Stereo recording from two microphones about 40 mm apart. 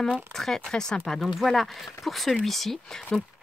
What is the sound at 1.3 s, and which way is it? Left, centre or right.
Speech, centre.